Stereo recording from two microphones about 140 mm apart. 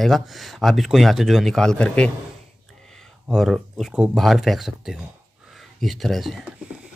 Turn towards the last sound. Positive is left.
turn(degrees=0)  # may be behind; listen again after turning